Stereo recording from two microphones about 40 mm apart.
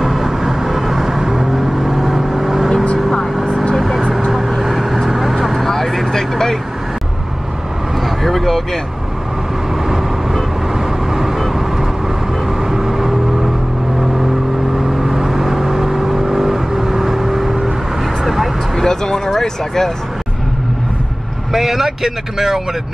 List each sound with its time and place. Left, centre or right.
0.0 s vehicle: centre
2.7 s vehicle: left
3.7 s vehicle: centre
5.7 s vehicle: centre
8.2 s vehicle: centre
11.1 s vehicle: centre
12.7 s vehicle: centre
15.0 s vehicle: centre
18.8 s a sound: centre
21.5 s a sound: centre